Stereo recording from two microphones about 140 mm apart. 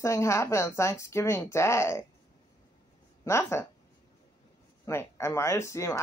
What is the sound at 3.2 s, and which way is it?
Speech, 20° left (ahead or behind).